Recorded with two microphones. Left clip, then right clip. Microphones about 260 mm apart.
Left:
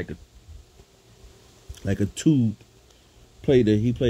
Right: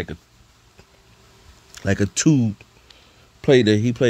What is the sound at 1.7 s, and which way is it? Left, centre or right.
Speech, right.